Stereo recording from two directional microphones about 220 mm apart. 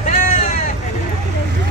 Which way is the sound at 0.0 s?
40° left (ahead or behind).